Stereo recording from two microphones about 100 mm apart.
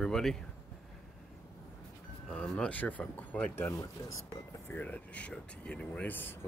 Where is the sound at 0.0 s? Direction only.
5° left (ahead or behind).